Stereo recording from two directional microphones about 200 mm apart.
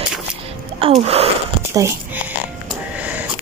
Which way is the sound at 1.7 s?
10° right (ahead or behind).